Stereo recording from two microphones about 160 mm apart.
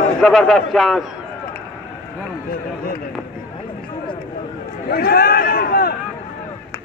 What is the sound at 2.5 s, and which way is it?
Speech, 65° left (ahead or behind).